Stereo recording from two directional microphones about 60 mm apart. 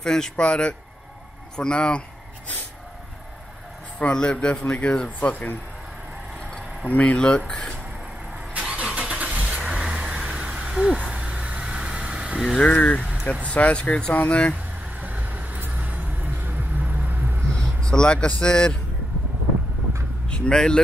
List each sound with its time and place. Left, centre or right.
0.0 s speech: centre
1.6 s a sound: centre
4.0 s speech: centre
6.9 s speech: left
7.2 s speech: centre
8.5 s vehicle: centre
9.1 s vehicle: right
12.5 s speech: left
14.1 s speech: left
14.5 s vehicle: right
17.6 s speech: centre
20.2 s speech: centre